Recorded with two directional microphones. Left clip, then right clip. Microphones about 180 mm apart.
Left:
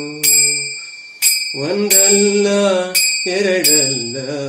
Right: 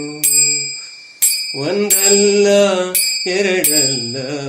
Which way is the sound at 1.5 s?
40° right (ahead or behind).